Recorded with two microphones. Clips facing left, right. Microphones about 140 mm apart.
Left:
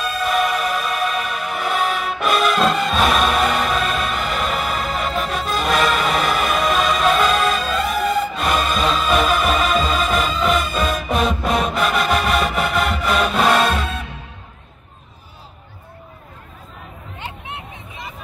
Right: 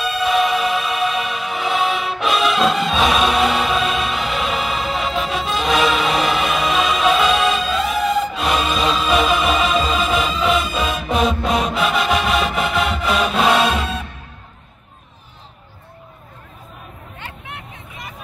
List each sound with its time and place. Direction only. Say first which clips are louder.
0.0 s music: right 2 dB; centre (ahead or behind)
17.2 s hubbub: left 3 dB; 20° left (ahead or behind)